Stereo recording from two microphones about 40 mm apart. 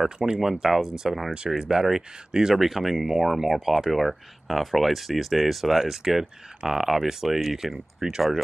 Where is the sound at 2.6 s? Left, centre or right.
Centre.